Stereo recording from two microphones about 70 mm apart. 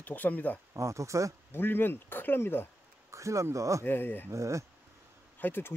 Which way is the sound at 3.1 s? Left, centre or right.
Right.